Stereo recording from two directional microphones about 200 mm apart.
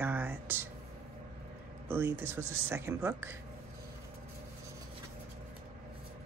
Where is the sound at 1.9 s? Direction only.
10° right (ahead or behind).